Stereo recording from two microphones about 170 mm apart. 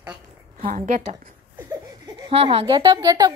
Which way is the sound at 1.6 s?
15° right (ahead or behind).